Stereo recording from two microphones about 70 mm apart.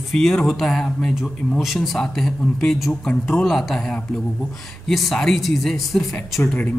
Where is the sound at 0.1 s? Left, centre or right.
Centre.